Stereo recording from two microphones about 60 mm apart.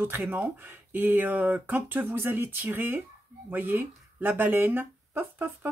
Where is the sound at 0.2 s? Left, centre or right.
Right.